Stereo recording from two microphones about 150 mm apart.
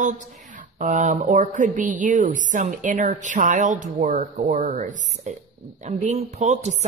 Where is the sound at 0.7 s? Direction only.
55° right (ahead or behind).